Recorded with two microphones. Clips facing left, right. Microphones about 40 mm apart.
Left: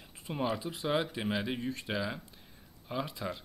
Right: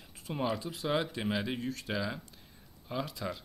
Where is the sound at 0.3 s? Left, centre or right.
Centre.